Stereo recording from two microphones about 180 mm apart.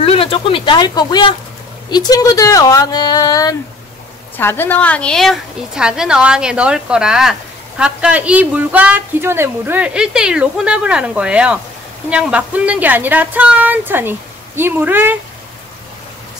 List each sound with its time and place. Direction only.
0.0 s a woman's voice: 30° left (ahead or behind); by 15.1 s 10° right (ahead or behind)